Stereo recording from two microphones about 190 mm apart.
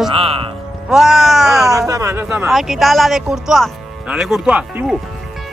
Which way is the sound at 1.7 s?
15° right (ahead or behind).